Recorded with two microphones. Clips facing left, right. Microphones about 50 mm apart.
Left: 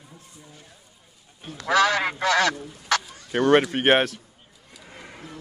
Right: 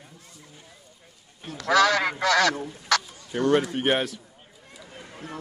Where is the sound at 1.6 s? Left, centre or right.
Left.